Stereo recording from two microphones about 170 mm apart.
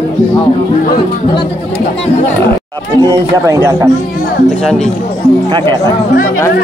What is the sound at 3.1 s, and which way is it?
Speech, 20° right (ahead or behind).